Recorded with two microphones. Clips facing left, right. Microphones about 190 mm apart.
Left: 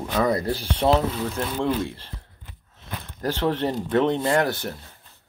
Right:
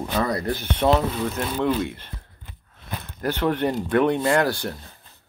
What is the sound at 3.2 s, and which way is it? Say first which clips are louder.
Speech: right 1 dB; 25° left (ahead or behind).